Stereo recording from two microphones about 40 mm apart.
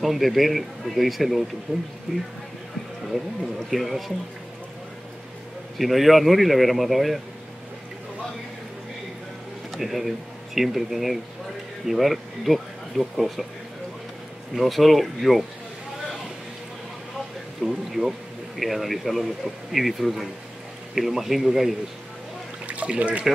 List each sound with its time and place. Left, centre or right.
0.0 s a man's voice: centre
3.7 s a man's voice: centre
5.8 s a man's voice: centre
9.8 s speech: centre
14.6 s a man's voice: centre
17.6 s a man's voice: centre
22.7 s speech: right